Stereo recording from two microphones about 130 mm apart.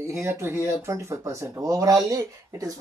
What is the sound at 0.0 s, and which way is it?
Speech, 20° right (ahead or behind).